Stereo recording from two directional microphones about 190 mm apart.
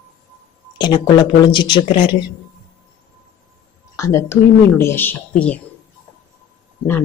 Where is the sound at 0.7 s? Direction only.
25° left (ahead or behind).